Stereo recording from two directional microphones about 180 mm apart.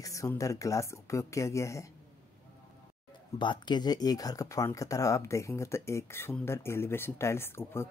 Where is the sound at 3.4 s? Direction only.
25° left (ahead or behind).